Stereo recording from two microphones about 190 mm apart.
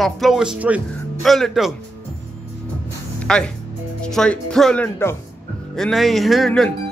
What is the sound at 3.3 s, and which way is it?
Speech, 5° left (ahead or behind).